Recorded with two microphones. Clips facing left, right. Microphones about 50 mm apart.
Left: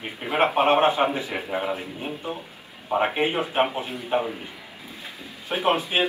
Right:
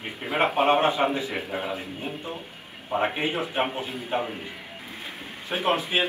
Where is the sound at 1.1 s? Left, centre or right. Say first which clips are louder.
Even; left.